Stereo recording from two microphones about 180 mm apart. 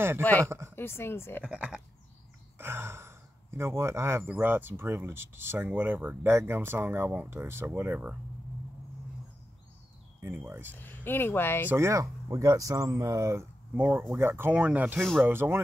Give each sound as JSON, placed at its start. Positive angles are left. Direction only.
{"t": 0.2, "sound": "speech", "side_deg": 10}
{"t": 0.5, "sound": "speech", "side_deg": -15}
{"t": 0.7, "sound": "speech", "side_deg": 15}
{"t": 1.4, "sound": "speech", "side_deg": -5}
{"t": 10.2, "sound": "speech", "side_deg": -10}
{"t": 10.7, "sound": "speech", "side_deg": 10}
{"t": 11.7, "sound": "speech", "side_deg": -15}
{"t": 15.0, "sound": "speech", "side_deg": 0}
{"t": 15.2, "sound": "speech", "side_deg": -10}